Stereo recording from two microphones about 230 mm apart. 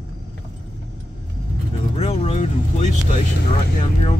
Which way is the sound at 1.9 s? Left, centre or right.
Left.